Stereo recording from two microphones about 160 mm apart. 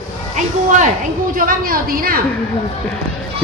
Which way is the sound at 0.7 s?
55° right (ahead or behind).